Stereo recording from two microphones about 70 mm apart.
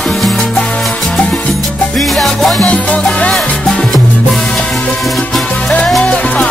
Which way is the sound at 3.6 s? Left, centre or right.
Centre.